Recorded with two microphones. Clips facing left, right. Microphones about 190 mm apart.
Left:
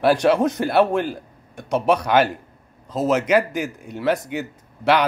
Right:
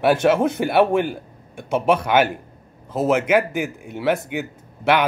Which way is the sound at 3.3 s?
5° right (ahead or behind).